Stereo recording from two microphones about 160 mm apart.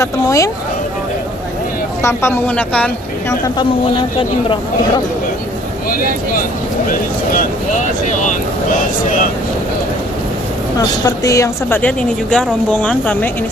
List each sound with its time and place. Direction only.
0.0 s speech: 20° left (ahead or behind)
2.0 s a woman's voice: 15° left (ahead or behind)
3.4 s speech: 30° left (ahead or behind)
6.9 s speech: 55° left (ahead or behind)
11.1 s a woman's voice: 20° left (ahead or behind)